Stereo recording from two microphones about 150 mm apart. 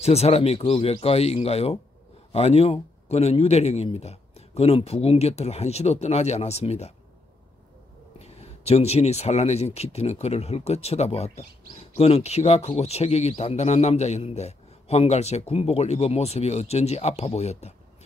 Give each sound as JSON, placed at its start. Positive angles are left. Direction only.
{"t": 0.0, "sound": "speech", "side_deg": 45}
{"t": 8.2, "sound": "speech", "side_deg": 45}